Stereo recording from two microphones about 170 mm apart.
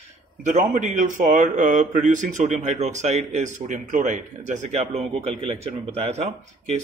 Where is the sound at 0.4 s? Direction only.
45° right (ahead or behind).